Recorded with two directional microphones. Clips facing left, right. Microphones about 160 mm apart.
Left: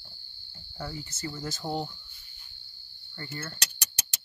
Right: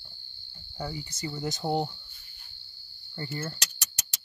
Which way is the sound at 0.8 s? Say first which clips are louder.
Right 2 dB; 10° right (ahead or behind).